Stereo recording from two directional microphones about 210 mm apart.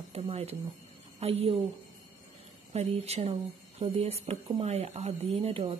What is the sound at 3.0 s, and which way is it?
Speech, 30° right (ahead or behind).